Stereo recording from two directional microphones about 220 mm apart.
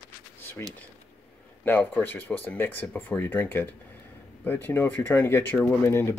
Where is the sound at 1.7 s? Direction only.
10° left (ahead or behind).